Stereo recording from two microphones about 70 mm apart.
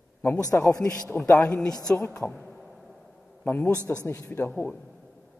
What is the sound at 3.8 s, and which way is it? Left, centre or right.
Speech, left.